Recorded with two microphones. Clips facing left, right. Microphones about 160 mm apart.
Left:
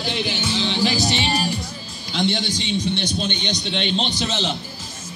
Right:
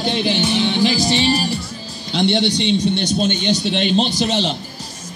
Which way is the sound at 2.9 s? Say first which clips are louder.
Right 6 dB; 45° right (ahead or behind).